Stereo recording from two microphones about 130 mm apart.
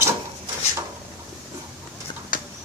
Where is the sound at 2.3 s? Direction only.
90° left.